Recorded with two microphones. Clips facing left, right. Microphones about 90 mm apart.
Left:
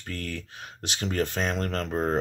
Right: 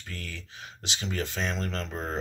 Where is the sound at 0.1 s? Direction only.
55° left (ahead or behind).